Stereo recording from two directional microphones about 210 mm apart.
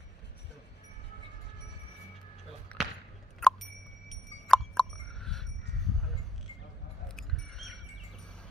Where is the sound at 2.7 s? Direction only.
5° left (ahead or behind).